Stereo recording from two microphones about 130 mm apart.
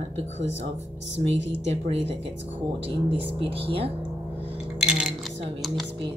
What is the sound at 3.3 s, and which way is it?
Speech, 45° right (ahead or behind).